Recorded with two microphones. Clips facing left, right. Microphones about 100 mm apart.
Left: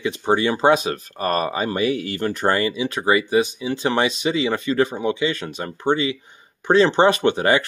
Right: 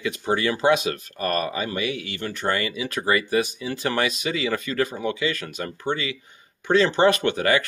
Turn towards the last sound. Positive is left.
turn(degrees=30)  # may be behind; listen again after turning